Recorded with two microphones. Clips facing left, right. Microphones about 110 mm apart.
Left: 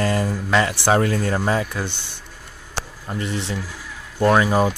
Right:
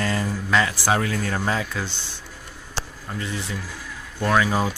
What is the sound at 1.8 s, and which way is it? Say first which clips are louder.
Speech: left 3 dB; 55° left (ahead or behind).